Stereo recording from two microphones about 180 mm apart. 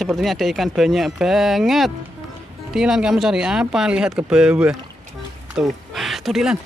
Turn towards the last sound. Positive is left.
turn(degrees=0)  # may be behind; listen again after turning